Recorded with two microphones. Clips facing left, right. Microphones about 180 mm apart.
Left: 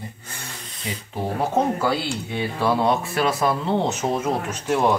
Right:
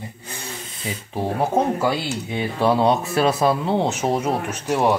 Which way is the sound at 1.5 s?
15° right (ahead or behind).